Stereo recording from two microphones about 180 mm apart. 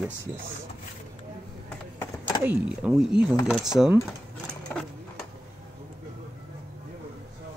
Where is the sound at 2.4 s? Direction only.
5° right (ahead or behind).